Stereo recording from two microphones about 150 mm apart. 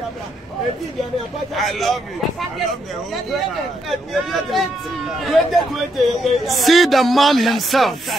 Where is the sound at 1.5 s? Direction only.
Centre (ahead or behind).